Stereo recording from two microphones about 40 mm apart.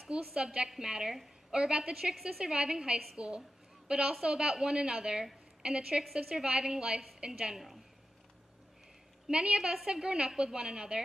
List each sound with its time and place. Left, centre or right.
0.1 s a woman's voice: right
0.5 s a woman's voice: centre
3.2 s a sound: right
4.2 s a woman's voice: centre
9.3 s a woman's voice: right